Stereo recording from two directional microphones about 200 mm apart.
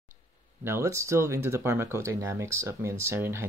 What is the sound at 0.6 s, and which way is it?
Speech, 10° right (ahead or behind).